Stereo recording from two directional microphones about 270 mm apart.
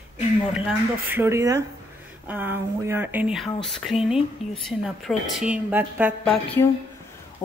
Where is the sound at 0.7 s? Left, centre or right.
Centre.